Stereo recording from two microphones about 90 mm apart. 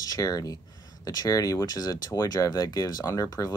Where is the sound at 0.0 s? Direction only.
45° left (ahead or behind).